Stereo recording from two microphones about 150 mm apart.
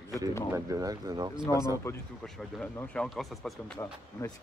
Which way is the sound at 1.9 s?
15° left (ahead or behind).